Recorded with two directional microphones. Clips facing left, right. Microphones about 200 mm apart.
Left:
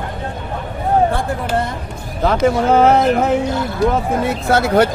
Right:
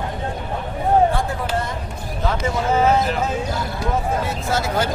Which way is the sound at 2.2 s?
65° left (ahead or behind).